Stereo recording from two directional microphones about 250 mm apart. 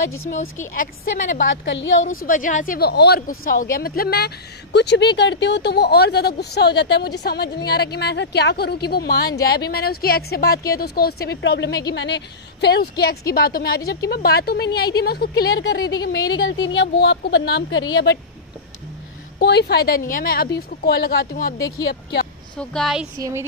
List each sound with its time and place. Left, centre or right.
0.6 s a woman's voice: left
1.5 s speech: left
2.2 s a woman's voice: left
19.3 s a woman's voice: left
21.5 s speech: centre
22.6 s speech: centre
23.1 s a woman's voice: centre